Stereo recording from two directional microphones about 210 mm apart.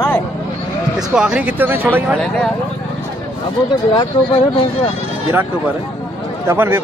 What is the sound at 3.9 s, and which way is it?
Speech, 25° left (ahead or behind).